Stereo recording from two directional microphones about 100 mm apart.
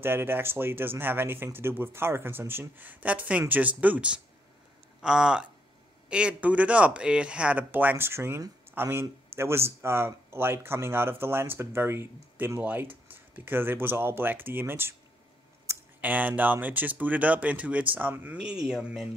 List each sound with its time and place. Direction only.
0.0 s a man's voice: 20° right (ahead or behind)
16.0 s speech: 15° right (ahead or behind)